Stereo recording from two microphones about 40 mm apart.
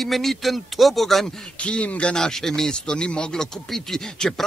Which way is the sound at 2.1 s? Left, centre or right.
Centre.